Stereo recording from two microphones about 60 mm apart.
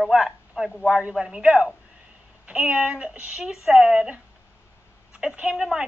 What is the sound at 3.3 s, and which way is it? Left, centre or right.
Speech, centre.